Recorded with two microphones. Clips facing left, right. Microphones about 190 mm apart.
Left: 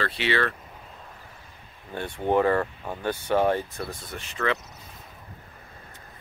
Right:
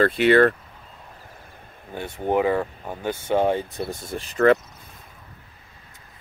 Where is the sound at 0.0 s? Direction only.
50° right (ahead or behind).